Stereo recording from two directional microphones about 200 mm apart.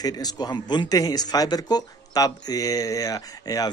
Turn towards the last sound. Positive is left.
turn(degrees=20)  # may be behind; listen again after turning